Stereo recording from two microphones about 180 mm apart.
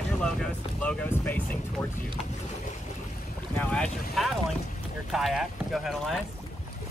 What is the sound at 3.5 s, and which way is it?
Speech, 5° left (ahead or behind).